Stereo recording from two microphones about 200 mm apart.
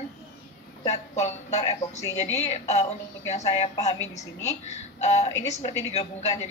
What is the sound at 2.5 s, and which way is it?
Speech, 35° left (ahead or behind).